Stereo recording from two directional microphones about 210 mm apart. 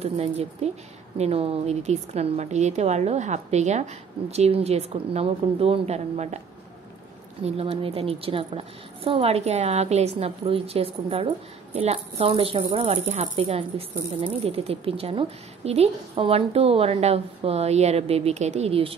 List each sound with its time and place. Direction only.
0.0 s a woman's voice: 30° right (ahead or behind)
7.4 s a woman's voice: 30° right (ahead or behind)